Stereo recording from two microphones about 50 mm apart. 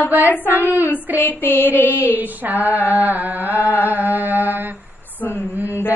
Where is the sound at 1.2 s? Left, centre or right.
Left.